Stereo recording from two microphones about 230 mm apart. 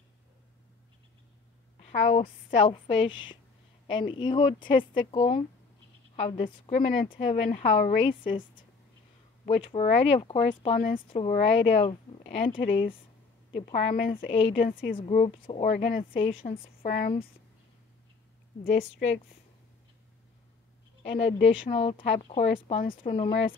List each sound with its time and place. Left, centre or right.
1.8 s speech: left
9.6 s speech: left
12.2 s speech: left
14.3 s speech: left
16.6 s speech: left
18.6 s a woman's voice: left
21.2 s speech: left